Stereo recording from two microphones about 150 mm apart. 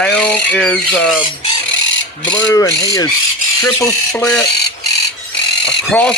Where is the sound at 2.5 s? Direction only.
20° left (ahead or behind).